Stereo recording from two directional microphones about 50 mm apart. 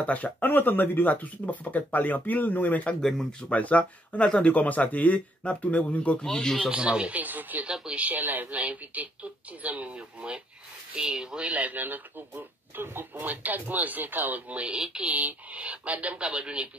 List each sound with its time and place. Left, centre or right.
0.0 s speech: left
3.0 s speech: centre
3.4 s speech: left
6.1 s speech: centre
6.7 s speech: right
7.6 s speech: centre
8.0 s speech: right
14.7 s speech: centre
15.0 s speech: right